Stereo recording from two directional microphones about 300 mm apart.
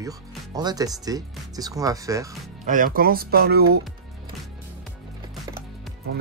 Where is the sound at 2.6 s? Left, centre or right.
Right.